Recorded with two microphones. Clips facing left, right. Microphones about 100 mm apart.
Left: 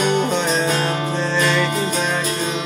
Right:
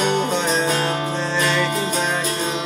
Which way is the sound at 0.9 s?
30° right (ahead or behind).